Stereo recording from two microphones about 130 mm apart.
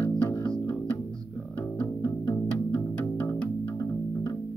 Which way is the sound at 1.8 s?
15° left (ahead or behind).